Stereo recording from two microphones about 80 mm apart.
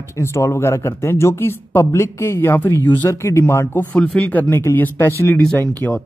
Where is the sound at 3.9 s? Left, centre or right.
Centre.